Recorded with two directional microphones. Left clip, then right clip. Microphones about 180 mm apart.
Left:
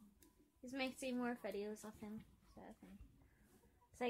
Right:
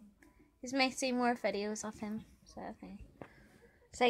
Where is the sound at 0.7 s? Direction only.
40° right (ahead or behind).